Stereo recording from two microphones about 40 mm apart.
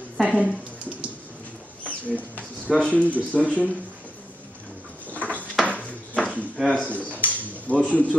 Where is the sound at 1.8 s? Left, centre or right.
Left.